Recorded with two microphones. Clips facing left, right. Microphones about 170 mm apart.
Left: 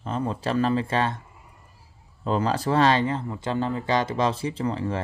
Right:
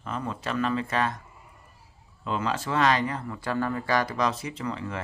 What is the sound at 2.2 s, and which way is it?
Speech, 35° left (ahead or behind).